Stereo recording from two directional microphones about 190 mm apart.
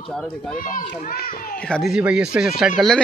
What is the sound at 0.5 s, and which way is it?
Speech, 50° left (ahead or behind).